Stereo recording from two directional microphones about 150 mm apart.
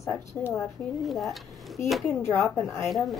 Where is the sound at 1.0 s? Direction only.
Centre (ahead or behind).